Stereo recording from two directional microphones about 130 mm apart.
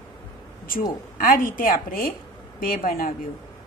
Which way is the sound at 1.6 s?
90° left.